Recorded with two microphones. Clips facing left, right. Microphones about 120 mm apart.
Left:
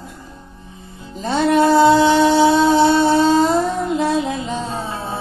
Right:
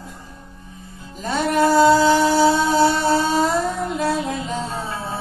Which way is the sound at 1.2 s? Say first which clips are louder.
Left 4 dB; 25° left (ahead or behind).